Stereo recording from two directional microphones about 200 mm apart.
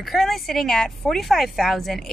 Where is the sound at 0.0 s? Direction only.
Centre (ahead or behind).